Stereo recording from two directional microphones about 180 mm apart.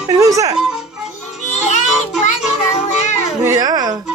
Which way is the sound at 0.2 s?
20° right (ahead or behind).